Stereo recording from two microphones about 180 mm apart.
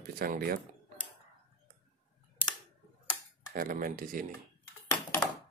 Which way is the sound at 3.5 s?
50° right (ahead or behind).